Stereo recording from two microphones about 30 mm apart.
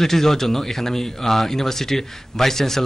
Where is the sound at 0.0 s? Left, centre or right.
Centre.